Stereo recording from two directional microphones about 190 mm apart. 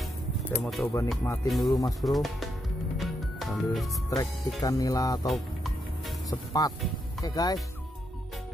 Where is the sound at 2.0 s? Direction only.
Centre (ahead or behind).